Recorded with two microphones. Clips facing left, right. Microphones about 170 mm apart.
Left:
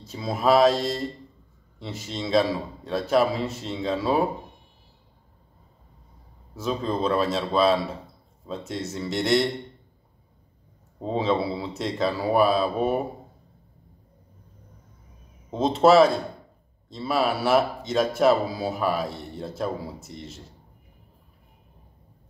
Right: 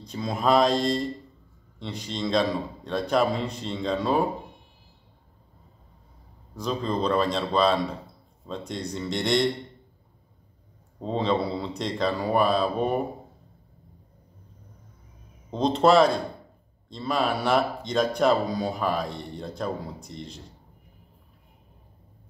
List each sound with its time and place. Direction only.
0.0 s speech: 5° left (ahead or behind)
6.5 s speech: 5° left (ahead or behind)
11.0 s speech: 5° left (ahead or behind)
15.5 s speech: 5° left (ahead or behind)